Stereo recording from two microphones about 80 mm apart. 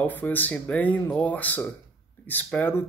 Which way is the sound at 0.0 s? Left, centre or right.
Left.